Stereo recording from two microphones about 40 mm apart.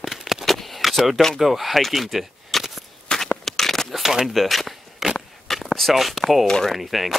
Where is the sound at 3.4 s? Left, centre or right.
Centre.